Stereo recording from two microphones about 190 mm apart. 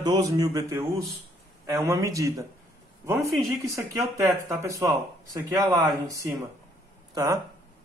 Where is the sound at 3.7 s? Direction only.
15° right (ahead or behind).